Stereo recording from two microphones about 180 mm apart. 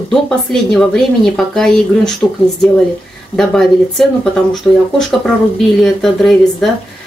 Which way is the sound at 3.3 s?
Centre (ahead or behind).